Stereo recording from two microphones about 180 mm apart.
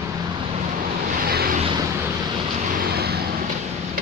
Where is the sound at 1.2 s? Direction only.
55° right (ahead or behind).